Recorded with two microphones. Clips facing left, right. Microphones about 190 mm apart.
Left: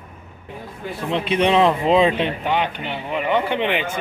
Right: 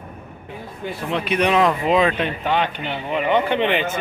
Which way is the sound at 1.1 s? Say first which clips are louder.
Left 1 dB; 25° left (ahead or behind).